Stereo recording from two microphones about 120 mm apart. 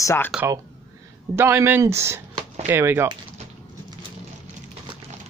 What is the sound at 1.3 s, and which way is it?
Speech, 20° right (ahead or behind).